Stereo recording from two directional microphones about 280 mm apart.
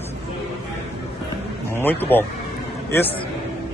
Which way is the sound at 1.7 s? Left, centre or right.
Centre.